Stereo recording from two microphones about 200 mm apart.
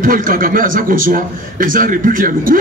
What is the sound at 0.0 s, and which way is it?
Speech, 45° right (ahead or behind).